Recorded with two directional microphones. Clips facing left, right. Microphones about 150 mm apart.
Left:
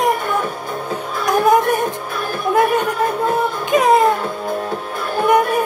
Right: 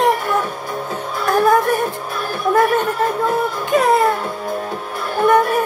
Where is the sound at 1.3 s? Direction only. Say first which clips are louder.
Even; 15° left (ahead or behind).